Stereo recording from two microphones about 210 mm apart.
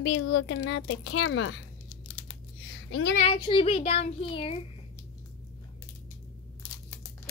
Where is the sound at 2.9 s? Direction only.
60° left (ahead or behind).